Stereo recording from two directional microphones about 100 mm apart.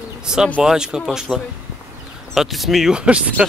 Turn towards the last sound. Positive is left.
turn(degrees=-10)  # may be behind; listen again after turning